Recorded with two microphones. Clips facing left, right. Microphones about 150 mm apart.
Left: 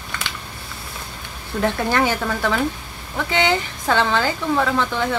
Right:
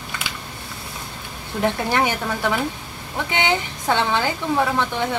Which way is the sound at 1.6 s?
15° right (ahead or behind).